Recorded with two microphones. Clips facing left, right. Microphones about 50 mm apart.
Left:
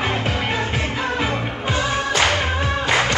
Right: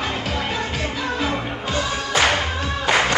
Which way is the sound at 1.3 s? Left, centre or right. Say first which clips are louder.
Left 1 dB; centre.